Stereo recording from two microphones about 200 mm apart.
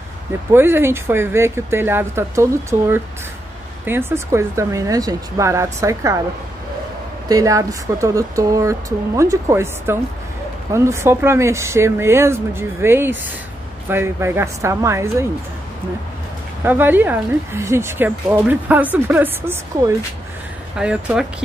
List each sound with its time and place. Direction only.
0.5 s speech: 10° right (ahead or behind)
3.8 s speech: 10° right (ahead or behind)
7.2 s speech: 15° right (ahead or behind)
16.6 s speech: 10° right (ahead or behind)